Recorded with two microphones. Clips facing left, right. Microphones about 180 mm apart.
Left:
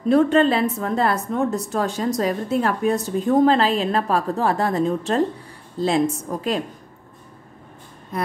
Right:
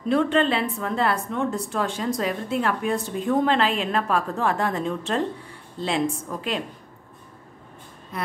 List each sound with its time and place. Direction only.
0.1 s a woman's voice: 40° left (ahead or behind)